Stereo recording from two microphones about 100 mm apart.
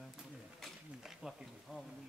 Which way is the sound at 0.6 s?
Centre (ahead or behind).